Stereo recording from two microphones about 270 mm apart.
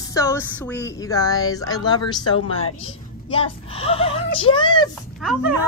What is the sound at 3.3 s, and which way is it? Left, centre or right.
Speech, left.